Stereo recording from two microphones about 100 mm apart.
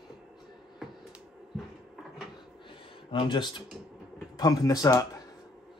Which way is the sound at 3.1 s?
50° left (ahead or behind).